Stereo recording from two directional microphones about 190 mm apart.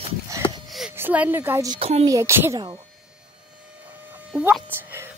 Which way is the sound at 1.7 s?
30° right (ahead or behind).